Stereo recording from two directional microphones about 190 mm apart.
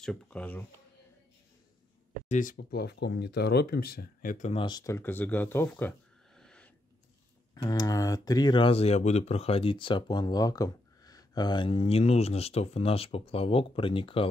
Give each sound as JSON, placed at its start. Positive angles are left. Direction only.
{"t": 0.0, "sound": "speech", "side_deg": 5}
{"t": 2.2, "sound": "speech", "side_deg": 40}
{"t": 2.5, "sound": "speech", "side_deg": 55}
{"t": 4.6, "sound": "speech", "side_deg": 20}
{"t": 7.5, "sound": "speech", "side_deg": 20}